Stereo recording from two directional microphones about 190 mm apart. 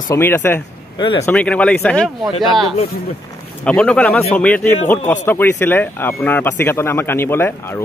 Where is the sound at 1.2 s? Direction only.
5° left (ahead or behind).